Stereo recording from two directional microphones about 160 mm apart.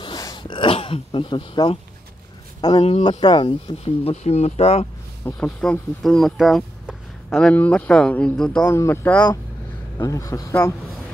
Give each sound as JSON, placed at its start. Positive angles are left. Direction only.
{"t": 0.0, "sound": "a sound", "side_deg": 25}
{"t": 2.8, "sound": "speech", "side_deg": 35}
{"t": 5.2, "sound": "speech", "side_deg": 5}
{"t": 8.6, "sound": "speech", "side_deg": 15}
{"t": 9.9, "sound": "speech", "side_deg": 20}